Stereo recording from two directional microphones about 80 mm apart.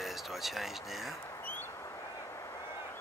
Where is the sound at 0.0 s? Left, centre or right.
Centre.